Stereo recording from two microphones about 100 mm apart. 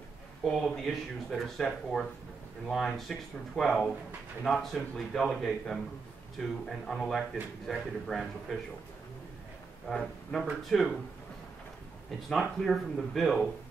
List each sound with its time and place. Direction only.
0.4 s speech: 5° left (ahead or behind)
9.8 s speech: 5° left (ahead or behind)
12.3 s speech: centre (ahead or behind)